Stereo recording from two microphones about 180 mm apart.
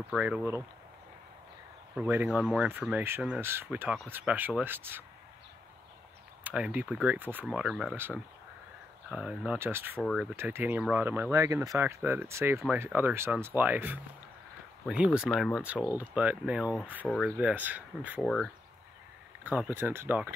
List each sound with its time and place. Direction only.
0.1 s speech: 5° right (ahead or behind)
2.0 s speech: 15° right (ahead or behind)
6.4 s speech: 10° right (ahead or behind)
9.1 s speech: 5° right (ahead or behind)
9.9 s speech: centre (ahead or behind)
10.3 s speech: 10° right (ahead or behind)
18.2 s speech: 5° left (ahead or behind)
19.4 s speech: 10° right (ahead or behind)